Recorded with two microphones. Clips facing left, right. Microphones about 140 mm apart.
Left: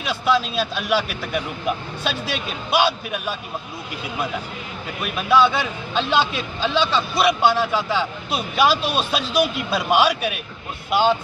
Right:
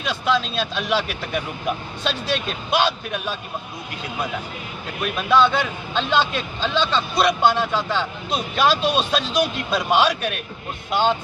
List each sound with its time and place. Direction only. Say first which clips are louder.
0.0 s a man's voice: left 1 dB; 5° left (ahead or behind)
5.0 s a man's voice: even; 5° left (ahead or behind)